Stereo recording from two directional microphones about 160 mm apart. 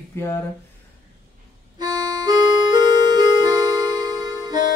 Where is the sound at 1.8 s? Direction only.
25° right (ahead or behind).